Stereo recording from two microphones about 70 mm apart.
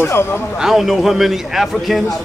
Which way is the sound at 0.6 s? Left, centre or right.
Centre.